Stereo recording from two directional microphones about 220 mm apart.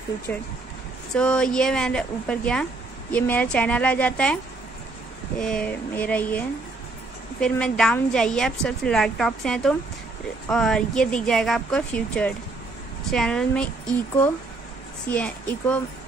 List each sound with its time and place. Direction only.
0.3 s a woman's voice: 10° left (ahead or behind)
5.4 s a woman's voice: 5° left (ahead or behind)
15.0 s a woman's voice: 5° left (ahead or behind)